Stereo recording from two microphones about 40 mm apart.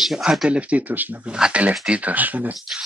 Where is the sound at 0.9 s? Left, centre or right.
Right.